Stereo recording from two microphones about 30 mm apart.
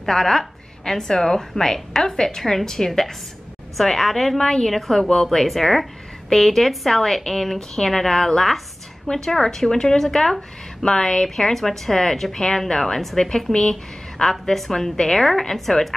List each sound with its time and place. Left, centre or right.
0.0 s a woman's voice: centre
4.4 s speech: left
4.6 s a woman's voice: centre
5.1 s a woman's voice: centre